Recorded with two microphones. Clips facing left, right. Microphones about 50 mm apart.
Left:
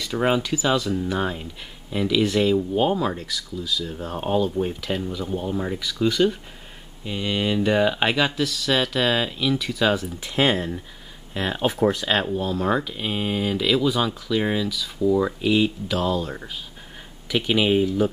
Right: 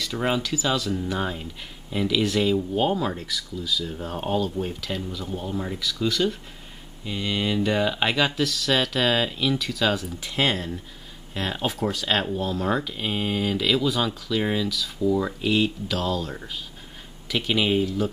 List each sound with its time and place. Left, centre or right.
0.0 s speech: centre
12.1 s speech: centre